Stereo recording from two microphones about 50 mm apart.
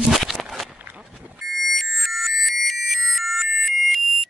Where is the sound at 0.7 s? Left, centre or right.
Right.